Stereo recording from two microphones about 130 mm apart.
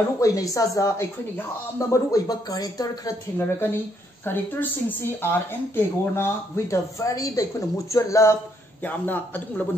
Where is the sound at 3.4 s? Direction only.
15° left (ahead or behind).